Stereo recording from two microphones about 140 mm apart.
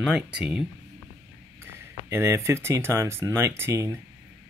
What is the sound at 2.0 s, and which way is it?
Speech, 20° right (ahead or behind).